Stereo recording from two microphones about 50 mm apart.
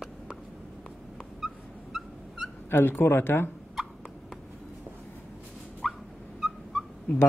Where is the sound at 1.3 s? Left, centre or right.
Centre.